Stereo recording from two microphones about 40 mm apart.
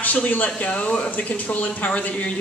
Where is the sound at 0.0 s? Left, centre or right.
Left.